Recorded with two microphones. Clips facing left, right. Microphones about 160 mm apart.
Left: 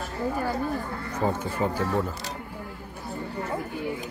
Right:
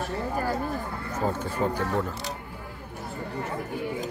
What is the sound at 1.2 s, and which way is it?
Speech, 10° left (ahead or behind).